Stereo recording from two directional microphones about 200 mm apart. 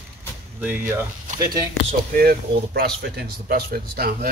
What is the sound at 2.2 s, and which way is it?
Speech, 50° right (ahead or behind).